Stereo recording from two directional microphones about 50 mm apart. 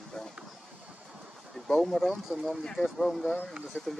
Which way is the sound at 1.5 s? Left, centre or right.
Centre.